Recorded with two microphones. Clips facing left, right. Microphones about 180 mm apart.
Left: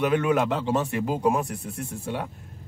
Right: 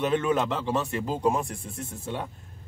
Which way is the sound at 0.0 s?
10° left (ahead or behind).